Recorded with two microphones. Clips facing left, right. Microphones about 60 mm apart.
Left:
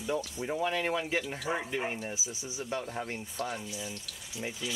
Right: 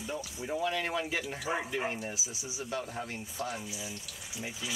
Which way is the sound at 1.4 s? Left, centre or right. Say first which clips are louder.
Even; centre.